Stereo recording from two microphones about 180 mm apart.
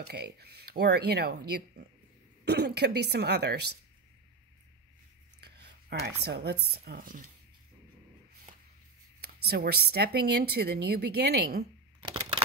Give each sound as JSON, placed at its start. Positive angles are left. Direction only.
{"t": 0.0, "sound": "speech", "side_deg": -60}
{"t": 2.4, "sound": "speech", "side_deg": -65}
{"t": 5.4, "sound": "speech", "side_deg": -65}
{"t": 9.2, "sound": "speech", "side_deg": -60}
{"t": 12.0, "sound": "a sound", "side_deg": -25}